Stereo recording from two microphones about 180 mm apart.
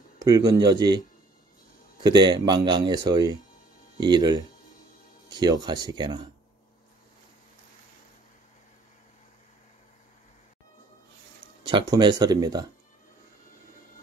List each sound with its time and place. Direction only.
0.2 s speech: 20° right (ahead or behind)
2.0 s speech: 25° right (ahead or behind)
11.6 s speech: 25° right (ahead or behind)